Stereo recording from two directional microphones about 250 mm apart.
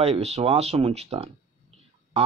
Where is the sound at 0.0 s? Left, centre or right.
Right.